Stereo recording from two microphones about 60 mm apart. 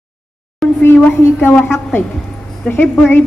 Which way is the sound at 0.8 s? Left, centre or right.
Left.